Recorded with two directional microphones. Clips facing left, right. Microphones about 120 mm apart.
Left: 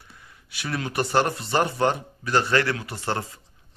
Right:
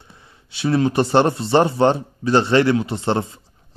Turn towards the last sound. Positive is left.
turn(degrees=-25)  # may be behind; listen again after turning